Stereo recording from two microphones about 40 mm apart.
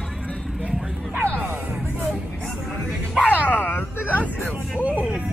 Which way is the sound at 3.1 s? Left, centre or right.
Left.